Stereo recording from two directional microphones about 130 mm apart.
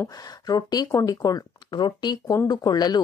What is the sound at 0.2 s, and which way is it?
A woman's voice, 30° left (ahead or behind).